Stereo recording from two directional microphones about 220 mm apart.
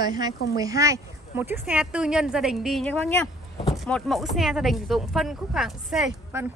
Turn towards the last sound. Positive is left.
turn(degrees=-5)  # may be behind; listen again after turning